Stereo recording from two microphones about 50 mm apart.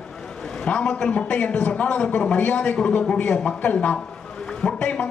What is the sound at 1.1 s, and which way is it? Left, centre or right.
A man's voice, left.